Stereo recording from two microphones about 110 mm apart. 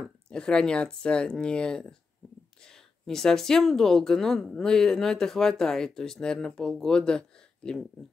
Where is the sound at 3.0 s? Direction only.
5° left (ahead or behind).